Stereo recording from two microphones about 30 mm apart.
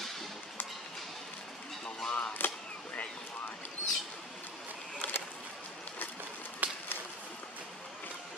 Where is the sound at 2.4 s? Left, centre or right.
Left.